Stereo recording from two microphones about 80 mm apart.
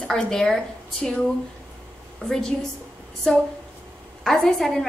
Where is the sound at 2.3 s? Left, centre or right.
Centre.